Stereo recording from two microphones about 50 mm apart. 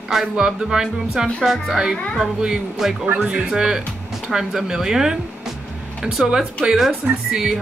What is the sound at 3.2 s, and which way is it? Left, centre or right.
Speech, right.